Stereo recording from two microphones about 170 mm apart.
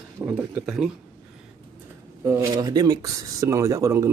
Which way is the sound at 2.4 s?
25° right (ahead or behind).